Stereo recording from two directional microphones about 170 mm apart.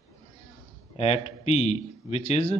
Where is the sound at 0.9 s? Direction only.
35° left (ahead or behind).